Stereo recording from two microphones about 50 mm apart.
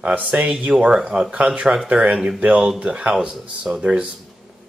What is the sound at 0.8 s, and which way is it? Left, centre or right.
Speech, centre.